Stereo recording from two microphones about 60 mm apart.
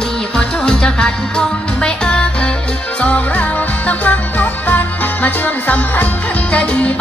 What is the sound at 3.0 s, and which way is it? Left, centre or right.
Music, left.